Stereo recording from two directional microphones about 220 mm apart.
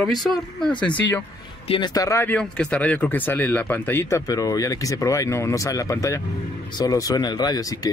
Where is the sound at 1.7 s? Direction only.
20° left (ahead or behind).